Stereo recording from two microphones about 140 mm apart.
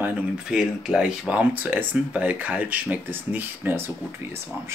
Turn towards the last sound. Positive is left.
turn(degrees=-15)  # may be behind; listen again after turning